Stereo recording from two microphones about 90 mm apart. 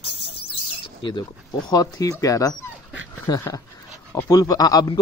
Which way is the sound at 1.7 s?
45° left (ahead or behind).